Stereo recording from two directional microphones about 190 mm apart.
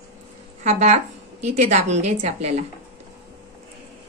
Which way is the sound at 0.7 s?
35° right (ahead or behind).